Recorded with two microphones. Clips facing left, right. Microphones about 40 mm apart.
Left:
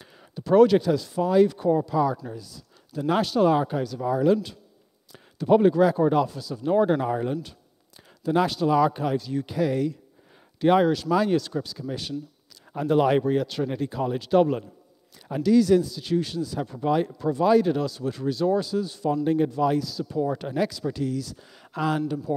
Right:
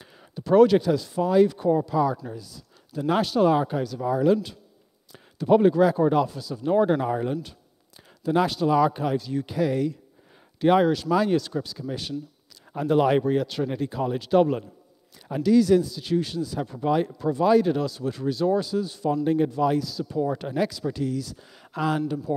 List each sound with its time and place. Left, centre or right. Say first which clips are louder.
0.0 s speech: even; centre